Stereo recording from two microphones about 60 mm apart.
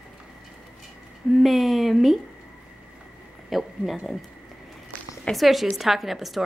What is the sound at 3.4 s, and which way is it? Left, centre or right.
Speech, centre.